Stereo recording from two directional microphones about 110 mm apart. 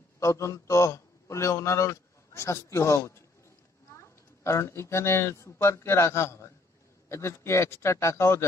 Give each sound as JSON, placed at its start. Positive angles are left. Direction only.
{"t": 0.2, "sound": "a man's voice", "side_deg": 25}